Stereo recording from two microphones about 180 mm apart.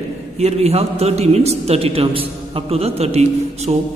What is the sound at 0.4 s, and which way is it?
A man's voice, 35° right (ahead or behind).